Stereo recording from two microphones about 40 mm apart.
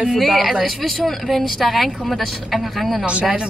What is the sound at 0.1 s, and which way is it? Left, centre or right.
A woman's voice, centre.